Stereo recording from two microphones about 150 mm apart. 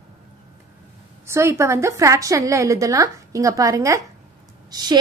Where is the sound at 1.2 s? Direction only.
20° right (ahead or behind).